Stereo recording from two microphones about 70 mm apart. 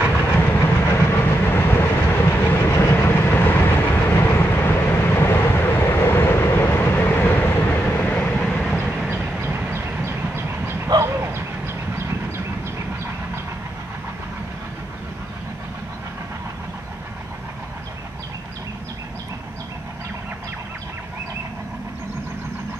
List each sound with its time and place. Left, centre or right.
0.4 s train: left
8.4 s vehicle: centre
9.4 s train: right
11.1 s a sound: right